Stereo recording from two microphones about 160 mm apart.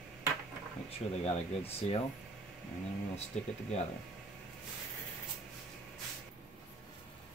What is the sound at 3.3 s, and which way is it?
Speech, 45° left (ahead or behind).